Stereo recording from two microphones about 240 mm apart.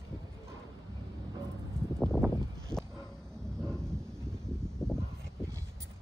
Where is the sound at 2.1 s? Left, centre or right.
Centre.